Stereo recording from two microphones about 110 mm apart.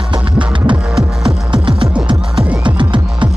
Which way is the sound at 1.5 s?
50° right (ahead or behind).